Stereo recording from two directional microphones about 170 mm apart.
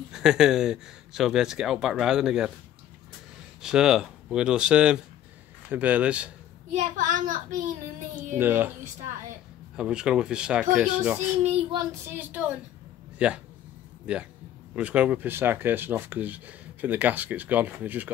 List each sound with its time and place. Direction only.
0.1 s speech: 5° right (ahead or behind)
3.6 s speech: 5° right (ahead or behind)
6.7 s a child's voice: 50° right (ahead or behind)
8.4 s speech: 10° right (ahead or behind)
9.8 s speech: 5° right (ahead or behind)
11.4 s a child's voice: 35° right (ahead or behind)
12.1 s speech: 10° right (ahead or behind)
14.8 s speech: 10° right (ahead or behind)